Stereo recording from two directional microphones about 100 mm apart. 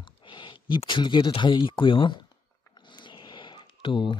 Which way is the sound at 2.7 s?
50° left (ahead or behind).